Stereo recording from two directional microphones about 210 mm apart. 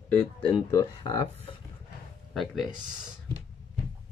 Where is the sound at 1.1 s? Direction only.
30° left (ahead or behind).